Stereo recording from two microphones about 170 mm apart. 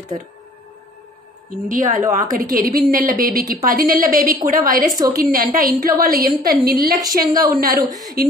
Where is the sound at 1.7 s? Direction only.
50° right (ahead or behind).